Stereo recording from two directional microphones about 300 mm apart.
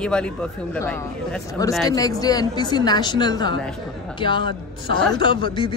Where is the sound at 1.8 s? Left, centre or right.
Centre.